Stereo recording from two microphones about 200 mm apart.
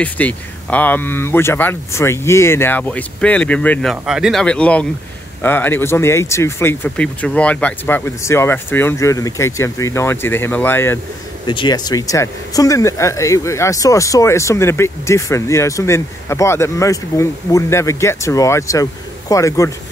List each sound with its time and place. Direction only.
0.0 s speech: 5° left (ahead or behind)
11.4 s speech: 20° left (ahead or behind)